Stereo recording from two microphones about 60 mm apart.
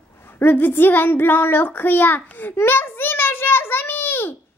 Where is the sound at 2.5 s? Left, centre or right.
Left.